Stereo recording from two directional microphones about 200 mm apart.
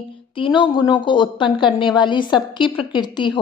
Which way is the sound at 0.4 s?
25° left (ahead or behind).